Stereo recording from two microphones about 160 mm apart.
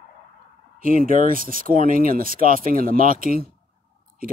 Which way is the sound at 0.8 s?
60° right (ahead or behind).